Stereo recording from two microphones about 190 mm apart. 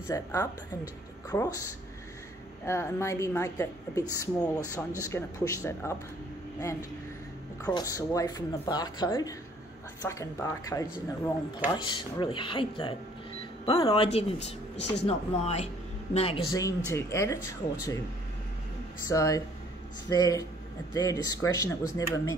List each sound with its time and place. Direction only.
0.1 s a woman's voice: 15° left (ahead or behind)
2.6 s a woman's voice: 15° left (ahead or behind)
7.6 s a woman's voice: 20° left (ahead or behind)
16.5 s a woman's voice: 15° left (ahead or behind)
19.0 s a woman's voice: 20° left (ahead or behind)